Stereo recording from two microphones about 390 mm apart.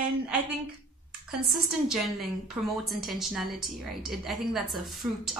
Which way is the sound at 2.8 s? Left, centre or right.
Centre.